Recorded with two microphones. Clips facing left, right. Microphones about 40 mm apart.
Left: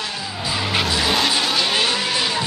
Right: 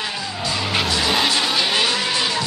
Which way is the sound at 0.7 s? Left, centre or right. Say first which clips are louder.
Even; centre.